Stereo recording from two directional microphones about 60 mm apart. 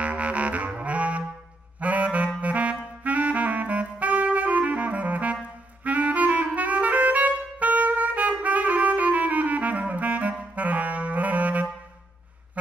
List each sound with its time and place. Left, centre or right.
0.0 s saxophone: right